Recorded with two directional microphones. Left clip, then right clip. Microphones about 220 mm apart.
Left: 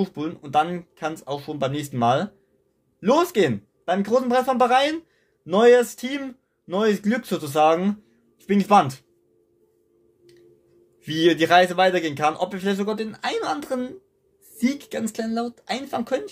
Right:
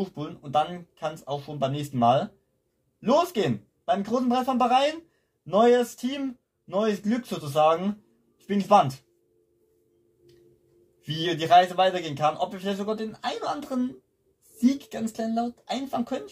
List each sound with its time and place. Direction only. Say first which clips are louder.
0.0 s a man's voice: left 6 dB; 45° left (ahead or behind)
11.0 s a man's voice: left 9 dB; 45° left (ahead or behind)